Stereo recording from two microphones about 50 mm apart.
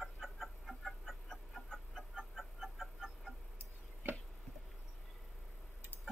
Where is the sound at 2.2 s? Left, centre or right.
Centre.